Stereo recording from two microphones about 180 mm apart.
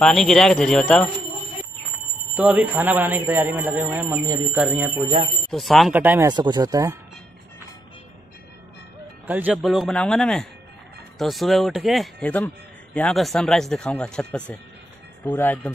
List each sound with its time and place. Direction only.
0.0 s speech: centre (ahead or behind)
2.3 s speech: 10° right (ahead or behind)
6.2 s speech: 25° right (ahead or behind)
9.3 s speech: 10° right (ahead or behind); by 15.7 s 10° left (ahead or behind)